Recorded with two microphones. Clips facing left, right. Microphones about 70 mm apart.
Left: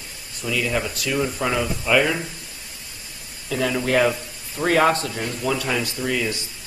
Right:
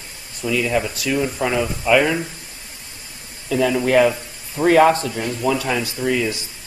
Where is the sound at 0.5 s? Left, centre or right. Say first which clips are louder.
Right 4 dB; centre.